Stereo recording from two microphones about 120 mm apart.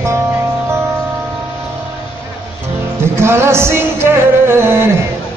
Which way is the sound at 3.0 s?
20° right (ahead or behind).